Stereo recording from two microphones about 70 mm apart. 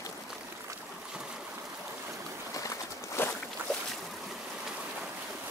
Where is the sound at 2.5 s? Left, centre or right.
Left.